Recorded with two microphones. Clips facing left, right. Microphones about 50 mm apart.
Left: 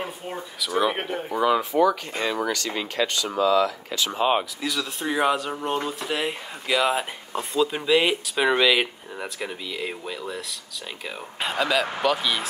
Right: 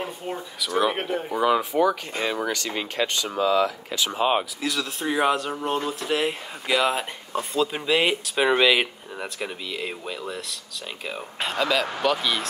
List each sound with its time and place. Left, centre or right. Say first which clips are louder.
0.0 s speech: right 1 dB; centre
2.4 s speech: left 1 dB; right
4.1 s speech: left 1 dB; centre